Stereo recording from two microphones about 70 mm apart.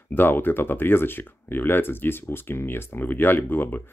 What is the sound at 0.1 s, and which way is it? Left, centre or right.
Speech, left.